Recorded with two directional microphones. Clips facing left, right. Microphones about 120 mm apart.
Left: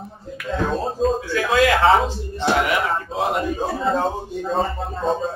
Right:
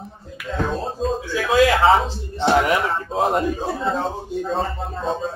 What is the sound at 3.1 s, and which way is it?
Speech, 35° right (ahead or behind).